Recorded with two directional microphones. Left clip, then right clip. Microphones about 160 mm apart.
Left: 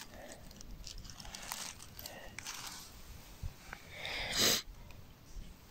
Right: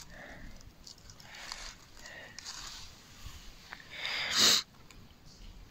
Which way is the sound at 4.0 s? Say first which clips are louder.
Right 6 dB; 15° left (ahead or behind).